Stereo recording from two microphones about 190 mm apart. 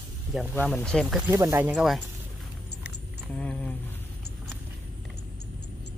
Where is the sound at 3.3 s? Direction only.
5° left (ahead or behind).